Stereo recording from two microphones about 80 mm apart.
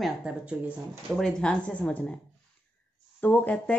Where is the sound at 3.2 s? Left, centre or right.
Left.